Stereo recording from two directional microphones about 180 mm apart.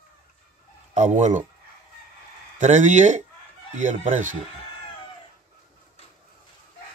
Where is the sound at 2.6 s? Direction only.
40° right (ahead or behind).